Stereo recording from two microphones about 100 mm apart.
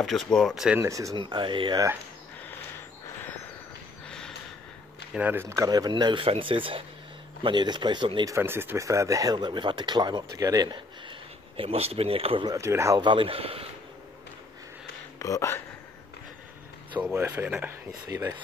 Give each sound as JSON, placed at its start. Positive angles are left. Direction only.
{"t": 0.0, "sound": "speech", "side_deg": 5}
{"t": 0.7, "sound": "speech", "side_deg": -30}
{"t": 1.1, "sound": "speech", "side_deg": -55}
{"t": 4.1, "sound": "gasp", "side_deg": 10}
{"t": 5.1, "sound": "speech", "side_deg": -20}
{"t": 5.6, "sound": "speech", "side_deg": -40}
{"t": 6.2, "sound": "speech", "side_deg": -65}
{"t": 7.4, "sound": "speech", "side_deg": -50}
{"t": 8.3, "sound": "speech", "side_deg": -25}
{"t": 12.4, "sound": "speech", "side_deg": -30}
{"t": 13.0, "sound": "speech", "side_deg": -60}
{"t": 15.1, "sound": "speech", "side_deg": 35}
{"t": 17.1, "sound": "speech", "side_deg": -30}